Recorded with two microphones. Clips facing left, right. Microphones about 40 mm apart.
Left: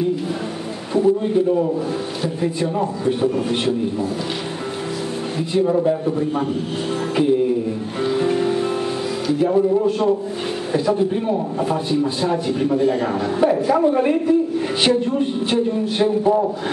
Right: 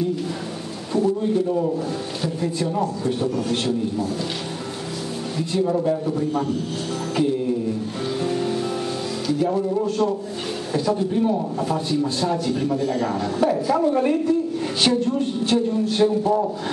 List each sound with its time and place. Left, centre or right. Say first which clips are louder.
0.9 s a sound: left 4 dB; left
2.2 s a man's voice: left 2 dB; centre
5.5 s a man's voice: left 4 dB; centre
7.2 s music: left 4 dB; left
9.3 s a man's voice: left 5 dB; centre